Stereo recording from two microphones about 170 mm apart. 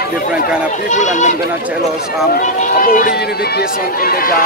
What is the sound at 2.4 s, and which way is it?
Speech, 55° left (ahead or behind).